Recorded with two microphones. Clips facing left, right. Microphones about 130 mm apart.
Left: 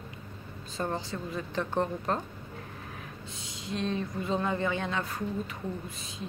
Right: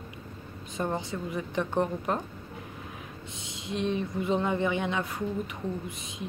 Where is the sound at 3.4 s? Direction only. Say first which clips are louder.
Right 2 dB; 25° right (ahead or behind).